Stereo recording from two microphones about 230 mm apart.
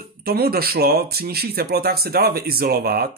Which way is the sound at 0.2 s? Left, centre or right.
Right.